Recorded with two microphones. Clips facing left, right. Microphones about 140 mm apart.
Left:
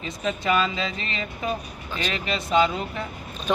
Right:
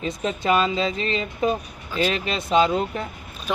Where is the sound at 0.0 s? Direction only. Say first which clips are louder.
Right 2 dB; 35° right (ahead or behind).